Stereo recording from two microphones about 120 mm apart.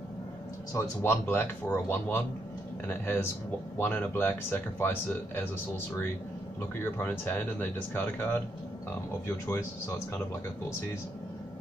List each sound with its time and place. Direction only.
0.7 s speech: 20° left (ahead or behind)
6.8 s speech: 15° left (ahead or behind)
9.5 s speech: 20° left (ahead or behind)